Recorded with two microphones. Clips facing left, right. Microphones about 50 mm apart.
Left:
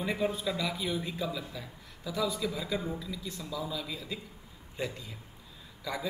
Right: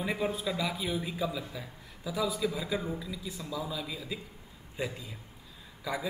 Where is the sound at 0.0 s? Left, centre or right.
Centre.